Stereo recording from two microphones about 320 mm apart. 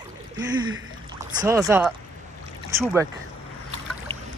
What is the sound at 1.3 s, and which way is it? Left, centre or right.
Speech, centre.